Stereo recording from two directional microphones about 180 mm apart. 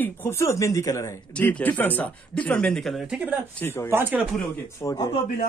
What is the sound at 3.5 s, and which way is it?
Speech, 10° left (ahead or behind).